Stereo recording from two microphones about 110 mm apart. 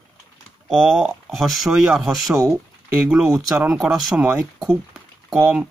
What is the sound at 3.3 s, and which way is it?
Speech, 25° right (ahead or behind).